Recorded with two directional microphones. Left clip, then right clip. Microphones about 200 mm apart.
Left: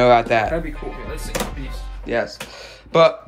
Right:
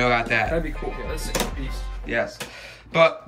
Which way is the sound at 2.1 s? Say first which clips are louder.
Left 3 dB; 15° left (ahead or behind).